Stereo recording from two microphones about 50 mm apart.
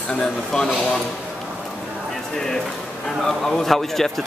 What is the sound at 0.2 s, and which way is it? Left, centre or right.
Speech, centre.